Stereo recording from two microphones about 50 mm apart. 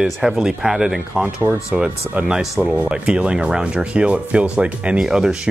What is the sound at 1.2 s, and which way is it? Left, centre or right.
Speech, right.